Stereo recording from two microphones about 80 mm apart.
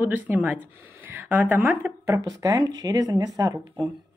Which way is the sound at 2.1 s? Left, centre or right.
Right.